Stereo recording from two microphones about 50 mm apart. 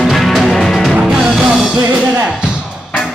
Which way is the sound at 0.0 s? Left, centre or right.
Centre.